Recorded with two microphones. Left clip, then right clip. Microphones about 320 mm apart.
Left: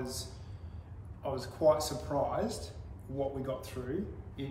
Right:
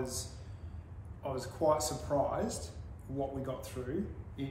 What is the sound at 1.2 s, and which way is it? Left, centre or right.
A man's voice, centre.